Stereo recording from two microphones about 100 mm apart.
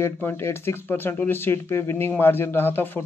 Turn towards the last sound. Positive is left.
turn(degrees=20)  # may be behind; listen again after turning